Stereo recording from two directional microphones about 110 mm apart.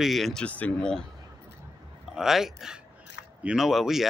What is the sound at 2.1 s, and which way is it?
Speech, 5° right (ahead or behind).